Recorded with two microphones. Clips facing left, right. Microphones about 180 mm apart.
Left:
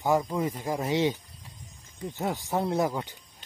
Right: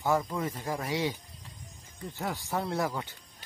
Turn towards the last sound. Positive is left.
turn(degrees=20)  # may be behind; listen again after turning